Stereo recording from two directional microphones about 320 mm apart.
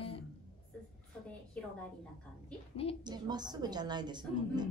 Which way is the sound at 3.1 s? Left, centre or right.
Centre.